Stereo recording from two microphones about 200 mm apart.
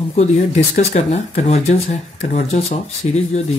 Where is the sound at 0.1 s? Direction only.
35° left (ahead or behind).